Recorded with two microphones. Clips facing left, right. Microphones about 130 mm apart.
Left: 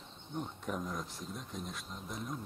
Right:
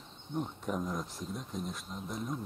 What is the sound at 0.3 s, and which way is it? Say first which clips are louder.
Speech: right 4 dB; centre (ahead or behind).